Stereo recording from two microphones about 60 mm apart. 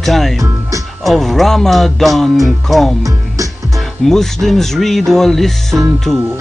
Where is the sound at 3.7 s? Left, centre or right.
Centre.